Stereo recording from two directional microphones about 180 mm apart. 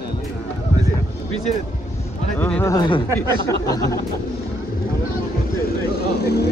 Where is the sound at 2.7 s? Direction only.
25° left (ahead or behind).